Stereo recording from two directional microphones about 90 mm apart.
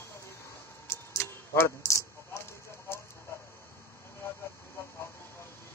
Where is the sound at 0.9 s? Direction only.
25° left (ahead or behind).